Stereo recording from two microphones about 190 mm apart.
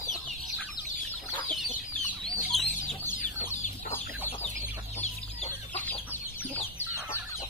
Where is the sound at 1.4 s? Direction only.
Centre (ahead or behind).